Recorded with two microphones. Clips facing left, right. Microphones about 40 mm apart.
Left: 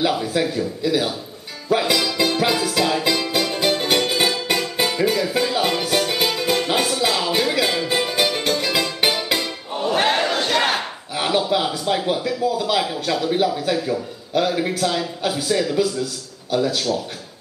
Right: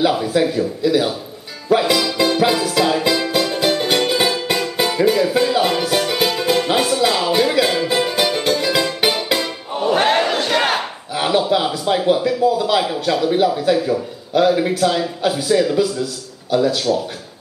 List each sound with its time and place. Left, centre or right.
0.0 s speech: centre
1.7 s music: centre
9.9 s battle cry: centre
11.5 s a man's voice: centre